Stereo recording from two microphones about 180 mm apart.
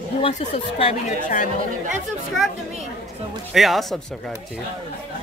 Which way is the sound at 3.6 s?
Centre (ahead or behind).